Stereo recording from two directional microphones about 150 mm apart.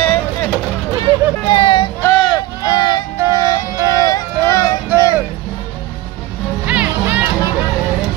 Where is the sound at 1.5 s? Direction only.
30° left (ahead or behind).